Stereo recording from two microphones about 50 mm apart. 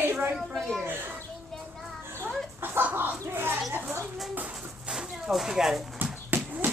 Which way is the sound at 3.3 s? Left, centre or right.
Right.